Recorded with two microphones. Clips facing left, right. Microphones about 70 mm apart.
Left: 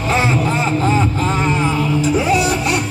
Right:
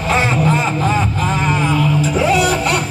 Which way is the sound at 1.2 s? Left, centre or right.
Left.